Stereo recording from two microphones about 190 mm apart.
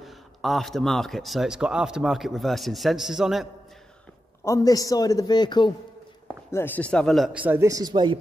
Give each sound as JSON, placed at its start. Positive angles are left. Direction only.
{"t": 0.0, "sound": "speech", "side_deg": 0}
{"t": 4.5, "sound": "a man's voice", "side_deg": 15}
{"t": 6.5, "sound": "speech", "side_deg": 10}
{"t": 7.3, "sound": "speech", "side_deg": -10}